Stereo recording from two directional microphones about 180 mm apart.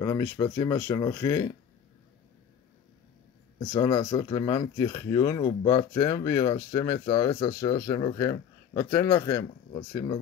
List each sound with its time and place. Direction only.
0.0 s speech: 20° left (ahead or behind)
3.5 s speech: 20° left (ahead or behind)